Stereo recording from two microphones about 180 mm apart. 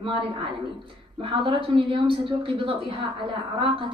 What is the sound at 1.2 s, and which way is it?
A woman's voice, 30° right (ahead or behind).